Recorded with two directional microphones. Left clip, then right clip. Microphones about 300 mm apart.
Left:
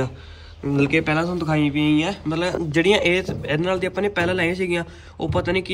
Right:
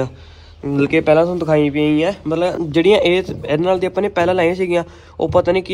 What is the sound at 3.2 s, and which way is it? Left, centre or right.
A man's voice, centre.